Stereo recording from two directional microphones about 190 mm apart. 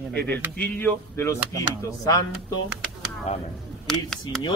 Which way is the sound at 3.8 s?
Centre (ahead or behind).